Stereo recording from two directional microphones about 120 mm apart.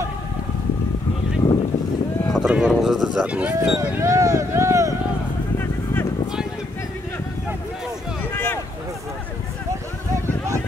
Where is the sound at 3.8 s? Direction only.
20° right (ahead or behind).